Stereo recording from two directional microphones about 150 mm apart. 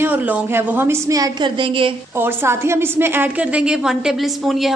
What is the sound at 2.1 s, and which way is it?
A woman's voice, 15° right (ahead or behind).